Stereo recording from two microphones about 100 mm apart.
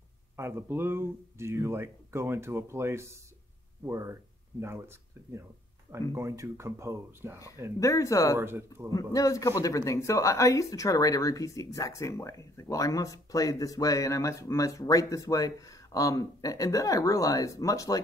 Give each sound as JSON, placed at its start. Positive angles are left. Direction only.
{"t": 0.4, "sound": "speech", "side_deg": -25}
{"t": 7.8, "sound": "speech", "side_deg": 35}
{"t": 8.4, "sound": "speech", "side_deg": -25}
{"t": 8.9, "sound": "speech", "side_deg": 35}